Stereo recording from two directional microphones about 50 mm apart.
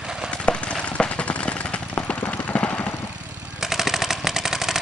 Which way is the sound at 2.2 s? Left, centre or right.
Left.